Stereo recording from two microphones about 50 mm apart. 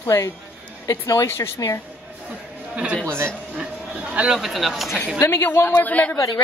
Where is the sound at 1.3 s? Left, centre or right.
Left.